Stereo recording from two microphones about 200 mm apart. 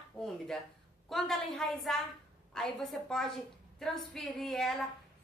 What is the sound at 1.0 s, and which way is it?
A woman's voice, centre (ahead or behind).